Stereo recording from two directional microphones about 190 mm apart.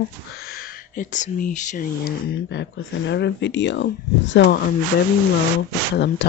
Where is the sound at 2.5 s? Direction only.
70° left (ahead or behind).